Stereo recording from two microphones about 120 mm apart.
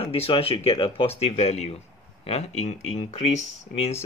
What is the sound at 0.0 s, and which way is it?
Speech, 50° left (ahead or behind).